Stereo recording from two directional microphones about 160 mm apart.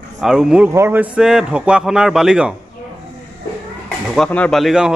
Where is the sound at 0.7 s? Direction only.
15° right (ahead or behind).